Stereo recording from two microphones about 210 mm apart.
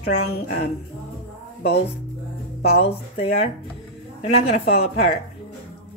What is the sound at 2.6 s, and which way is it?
Speech, 30° left (ahead or behind).